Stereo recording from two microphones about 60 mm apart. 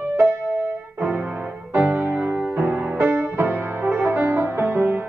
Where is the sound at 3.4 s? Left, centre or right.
Right.